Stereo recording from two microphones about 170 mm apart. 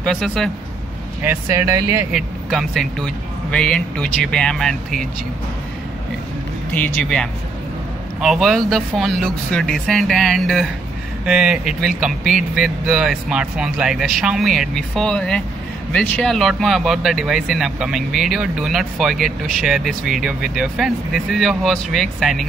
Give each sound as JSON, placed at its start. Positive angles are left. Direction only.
{"t": 0.0, "sound": "speech", "side_deg": 5}
{"t": 1.2, "sound": "speech", "side_deg": -15}
{"t": 2.1, "sound": "speech", "side_deg": 0}
{"t": 6.7, "sound": "speech", "side_deg": 10}